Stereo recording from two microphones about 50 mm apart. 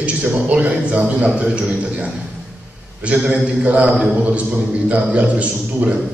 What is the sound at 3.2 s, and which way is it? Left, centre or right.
A man's voice, right.